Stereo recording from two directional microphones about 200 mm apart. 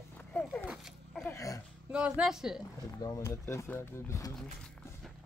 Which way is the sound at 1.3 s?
15° left (ahead or behind).